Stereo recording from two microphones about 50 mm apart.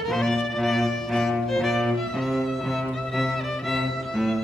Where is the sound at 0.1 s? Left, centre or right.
Centre.